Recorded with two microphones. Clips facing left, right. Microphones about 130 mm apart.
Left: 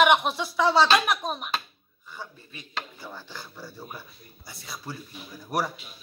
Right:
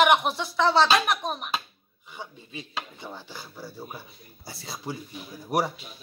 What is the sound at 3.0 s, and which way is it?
Speech, 15° right (ahead or behind).